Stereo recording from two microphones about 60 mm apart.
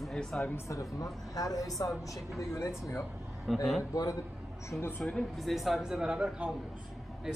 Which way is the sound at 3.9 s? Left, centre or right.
Left.